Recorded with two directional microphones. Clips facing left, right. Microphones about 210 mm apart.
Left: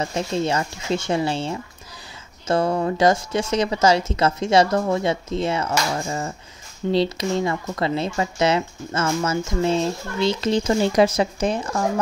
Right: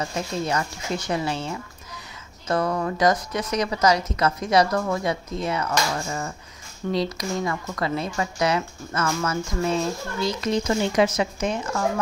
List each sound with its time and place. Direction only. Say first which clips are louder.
0.0 s speech: left 4 dB; 25° left (ahead or behind)